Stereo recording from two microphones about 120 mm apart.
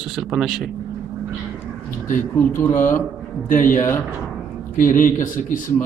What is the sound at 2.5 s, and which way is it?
Speech, 20° left (ahead or behind).